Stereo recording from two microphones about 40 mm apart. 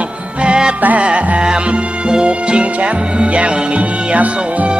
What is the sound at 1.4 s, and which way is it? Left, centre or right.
Music, right.